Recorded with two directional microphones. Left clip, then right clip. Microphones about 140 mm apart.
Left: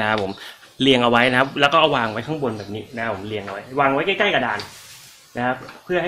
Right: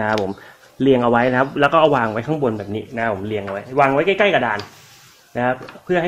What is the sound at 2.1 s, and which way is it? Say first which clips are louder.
Speech: right 4 dB; 50° right (ahead or behind).